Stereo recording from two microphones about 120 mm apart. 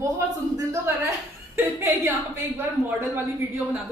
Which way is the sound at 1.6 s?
20° right (ahead or behind).